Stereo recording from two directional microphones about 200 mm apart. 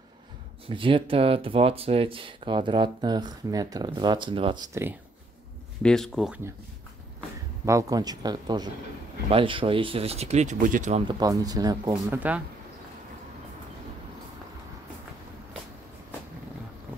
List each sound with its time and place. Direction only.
0.7 s speech: 25° right (ahead or behind)
5.8 s speech: 5° left (ahead or behind)
7.6 s speech: 15° right (ahead or behind)
12.2 s speech: 5° right (ahead or behind)